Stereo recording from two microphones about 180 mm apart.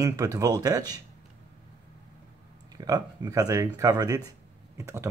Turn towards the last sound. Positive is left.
turn(degrees=-15)  # may be behind; listen again after turning